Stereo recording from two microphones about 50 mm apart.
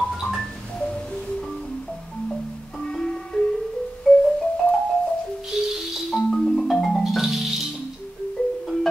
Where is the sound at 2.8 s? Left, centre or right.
Centre.